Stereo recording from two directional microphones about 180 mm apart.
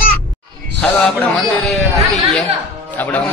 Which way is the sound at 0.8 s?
5° left (ahead or behind).